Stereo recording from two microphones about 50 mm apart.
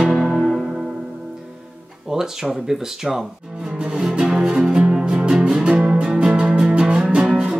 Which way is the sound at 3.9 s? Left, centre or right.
Centre.